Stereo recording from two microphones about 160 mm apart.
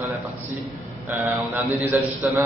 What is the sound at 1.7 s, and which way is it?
Speech, 15° right (ahead or behind).